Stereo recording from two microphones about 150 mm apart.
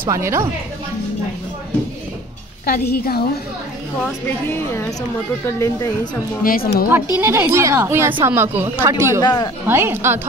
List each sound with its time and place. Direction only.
0.1 s a woman's voice: 20° right (ahead or behind)
2.6 s a woman's voice: 90° left
4.0 s a woman's voice: 15° left (ahead or behind)
6.4 s speech: 85° left
7.2 s speech: 15° right (ahead or behind)
9.2 s speech: 25° left (ahead or behind)
9.7 s speech: 15° right (ahead or behind)